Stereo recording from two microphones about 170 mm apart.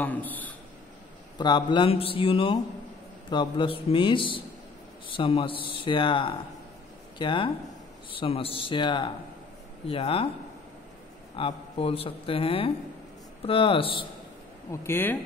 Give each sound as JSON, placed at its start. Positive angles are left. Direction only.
{"t": 0.0, "sound": "a man's voice", "side_deg": 10}
{"t": 1.4, "sound": "speech", "side_deg": 25}
{"t": 11.3, "sound": "speech", "side_deg": 35}
{"t": 14.7, "sound": "a man's voice", "side_deg": 15}